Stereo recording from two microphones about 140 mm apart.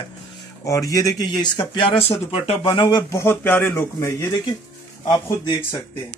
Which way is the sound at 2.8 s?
20° left (ahead or behind).